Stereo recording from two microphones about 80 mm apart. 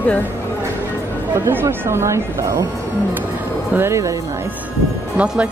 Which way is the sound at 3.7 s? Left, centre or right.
Right.